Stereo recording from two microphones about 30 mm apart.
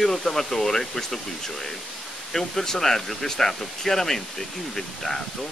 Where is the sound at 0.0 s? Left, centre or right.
Centre.